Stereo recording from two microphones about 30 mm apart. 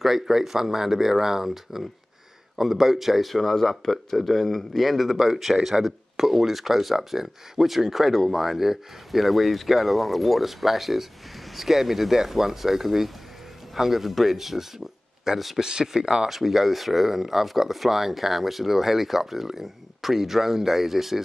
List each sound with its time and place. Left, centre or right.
0.0 s speech: centre
15.6 s speech: right
16.3 s speech: centre